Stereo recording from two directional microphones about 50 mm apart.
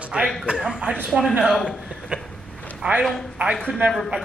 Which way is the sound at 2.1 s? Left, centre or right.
Right.